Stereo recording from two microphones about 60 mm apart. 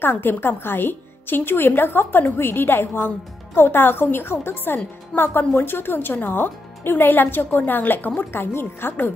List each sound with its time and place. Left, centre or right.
0.0 s a woman's voice: left